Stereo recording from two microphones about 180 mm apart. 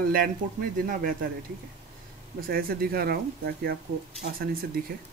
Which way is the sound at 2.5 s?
55° right (ahead or behind).